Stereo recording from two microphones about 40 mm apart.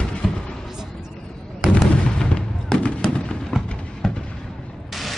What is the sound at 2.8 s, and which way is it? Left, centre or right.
Fireworks, left.